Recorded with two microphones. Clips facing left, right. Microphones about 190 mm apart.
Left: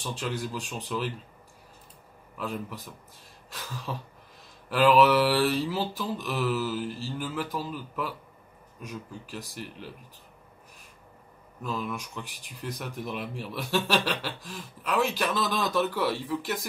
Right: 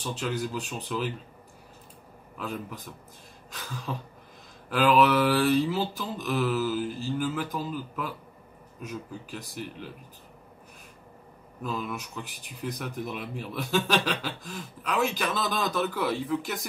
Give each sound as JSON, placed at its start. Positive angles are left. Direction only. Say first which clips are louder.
{"t": 0.0, "sound": "speech", "louder": "right 2 dB", "side_deg": 0}
{"t": 2.3, "sound": "speech", "louder": "left 1 dB", "side_deg": 0}
{"t": 3.4, "sound": "a sound", "louder": "right 1 dB", "side_deg": 0}
{"t": 4.6, "sound": "speech", "louder": "left 1 dB", "side_deg": 0}
{"t": 11.6, "sound": "speech", "louder": "even", "side_deg": 0}